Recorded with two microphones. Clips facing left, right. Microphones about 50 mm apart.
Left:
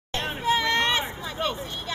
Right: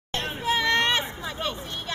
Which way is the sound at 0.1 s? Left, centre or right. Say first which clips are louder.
Left 2 dB; left.